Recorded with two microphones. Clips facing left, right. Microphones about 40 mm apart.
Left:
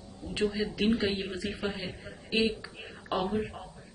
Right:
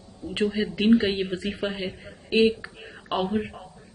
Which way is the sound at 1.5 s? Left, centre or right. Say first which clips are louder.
Right 5 dB; right.